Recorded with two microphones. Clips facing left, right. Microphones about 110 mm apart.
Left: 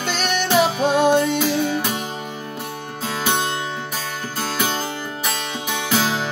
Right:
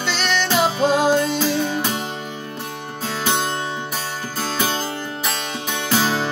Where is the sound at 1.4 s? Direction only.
Centre (ahead or behind).